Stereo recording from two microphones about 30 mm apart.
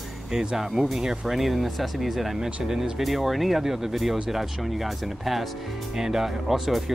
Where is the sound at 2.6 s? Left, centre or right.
Centre.